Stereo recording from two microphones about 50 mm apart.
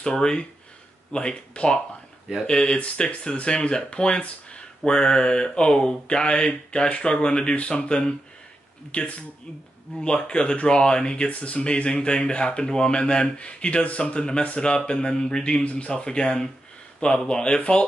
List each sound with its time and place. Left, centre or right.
0.0 s speech: centre